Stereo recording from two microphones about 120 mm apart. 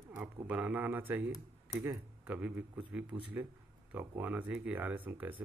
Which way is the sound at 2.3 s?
10° right (ahead or behind).